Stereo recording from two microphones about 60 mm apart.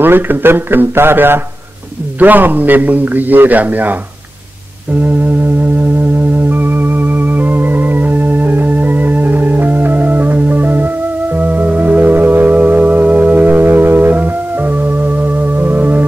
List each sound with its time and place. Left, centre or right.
0.0 s a man's voice: right
6.5 s music: right